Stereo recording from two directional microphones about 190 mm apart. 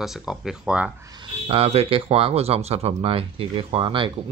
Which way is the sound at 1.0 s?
25° right (ahead or behind).